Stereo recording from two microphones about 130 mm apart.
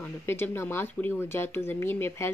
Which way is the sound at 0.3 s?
20° left (ahead or behind).